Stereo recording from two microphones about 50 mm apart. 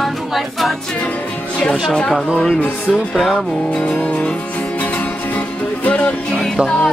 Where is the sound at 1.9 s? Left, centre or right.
Centre.